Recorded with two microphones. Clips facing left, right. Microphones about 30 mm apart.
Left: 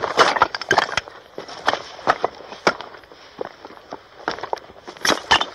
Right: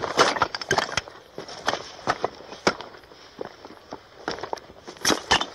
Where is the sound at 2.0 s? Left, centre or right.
Centre.